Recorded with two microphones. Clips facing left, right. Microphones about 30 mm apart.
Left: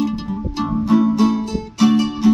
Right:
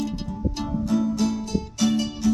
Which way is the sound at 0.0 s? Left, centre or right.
Left.